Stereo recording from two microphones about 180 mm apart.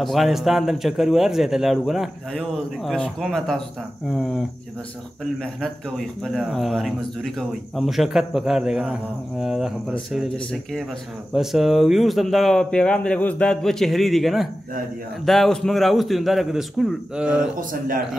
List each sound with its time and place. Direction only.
0.0 s speech: centre (ahead or behind)
17.6 s a man's voice: 50° right (ahead or behind)